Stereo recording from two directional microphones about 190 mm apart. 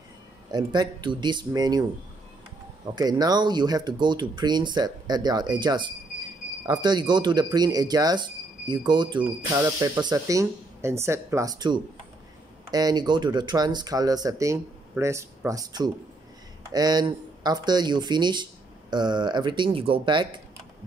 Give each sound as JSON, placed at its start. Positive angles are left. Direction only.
{"t": 0.5, "sound": "speech", "side_deg": -20}
{"t": 3.0, "sound": "speech", "side_deg": -20}
{"t": 9.2, "sound": "speech", "side_deg": -10}